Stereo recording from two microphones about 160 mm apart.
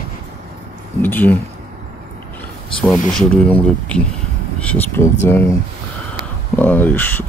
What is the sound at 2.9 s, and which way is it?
Speech, 5° left (ahead or behind).